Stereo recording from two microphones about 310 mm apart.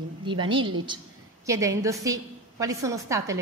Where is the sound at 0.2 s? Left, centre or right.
Centre.